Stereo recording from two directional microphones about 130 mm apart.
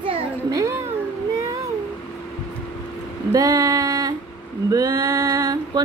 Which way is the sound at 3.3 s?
25° right (ahead or behind).